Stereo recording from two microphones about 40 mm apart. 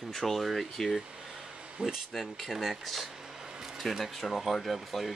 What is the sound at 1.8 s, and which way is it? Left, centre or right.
Speech, right.